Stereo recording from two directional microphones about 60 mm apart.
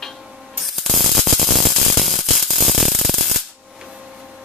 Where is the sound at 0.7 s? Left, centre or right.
Centre.